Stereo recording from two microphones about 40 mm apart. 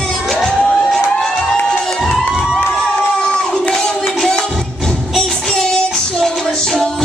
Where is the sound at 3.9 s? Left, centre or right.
Centre.